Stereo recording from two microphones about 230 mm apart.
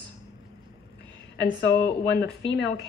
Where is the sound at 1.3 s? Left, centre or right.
Left.